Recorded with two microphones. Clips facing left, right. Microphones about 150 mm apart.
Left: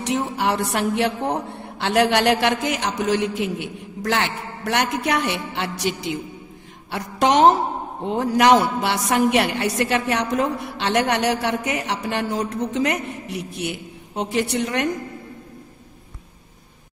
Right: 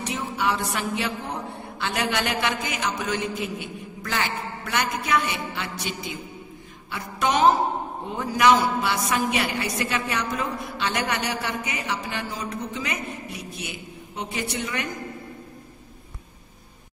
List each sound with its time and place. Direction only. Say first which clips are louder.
0.0 s a woman's voice: left 4 dB; 70° left (ahead or behind)